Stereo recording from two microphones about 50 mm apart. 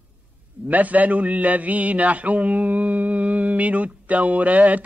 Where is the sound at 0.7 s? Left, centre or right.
Right.